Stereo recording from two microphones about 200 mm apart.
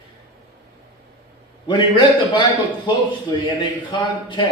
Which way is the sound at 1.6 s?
25° left (ahead or behind).